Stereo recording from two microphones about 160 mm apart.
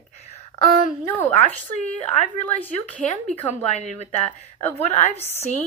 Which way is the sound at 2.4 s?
10° left (ahead or behind).